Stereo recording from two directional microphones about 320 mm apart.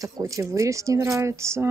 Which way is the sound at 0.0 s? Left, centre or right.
Centre.